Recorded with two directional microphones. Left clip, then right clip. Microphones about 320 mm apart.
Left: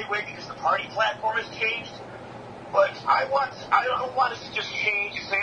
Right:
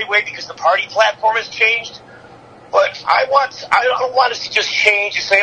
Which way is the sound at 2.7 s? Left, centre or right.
Right.